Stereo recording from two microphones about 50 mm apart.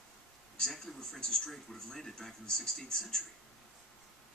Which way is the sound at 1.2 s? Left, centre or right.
Centre.